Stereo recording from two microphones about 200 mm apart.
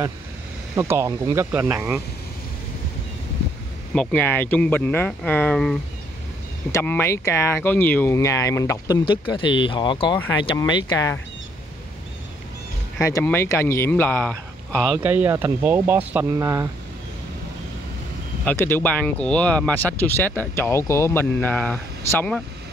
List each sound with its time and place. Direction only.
0.7 s speech: 15° right (ahead or behind)
3.9 s speech: 5° left (ahead or behind)
13.0 s speech: 15° left (ahead or behind); by 16.4 s 10° right (ahead or behind)
18.4 s speech: 10° left (ahead or behind)